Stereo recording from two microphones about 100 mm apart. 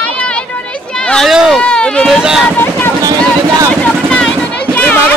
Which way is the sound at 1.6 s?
10° left (ahead or behind).